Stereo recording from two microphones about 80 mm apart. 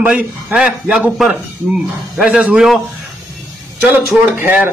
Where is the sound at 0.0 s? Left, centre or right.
Centre.